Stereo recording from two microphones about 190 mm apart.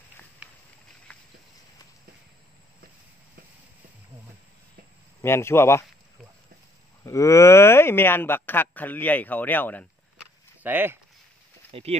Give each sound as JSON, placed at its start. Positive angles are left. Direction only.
{"t": 1.1, "sound": "a sound", "side_deg": 5}
{"t": 5.2, "sound": "speech", "side_deg": 15}
{"t": 7.1, "sound": "speech", "side_deg": 15}
{"t": 10.6, "sound": "speech", "side_deg": -10}
{"t": 11.7, "sound": "speech", "side_deg": -35}